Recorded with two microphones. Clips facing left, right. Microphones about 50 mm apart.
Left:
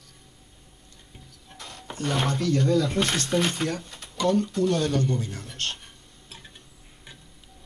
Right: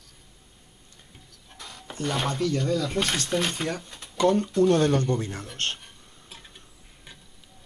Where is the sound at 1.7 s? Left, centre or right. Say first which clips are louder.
Left 1 dB; centre.